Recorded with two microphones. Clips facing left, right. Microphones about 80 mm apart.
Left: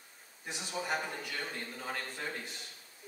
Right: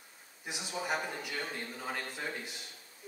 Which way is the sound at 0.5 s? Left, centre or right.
Centre.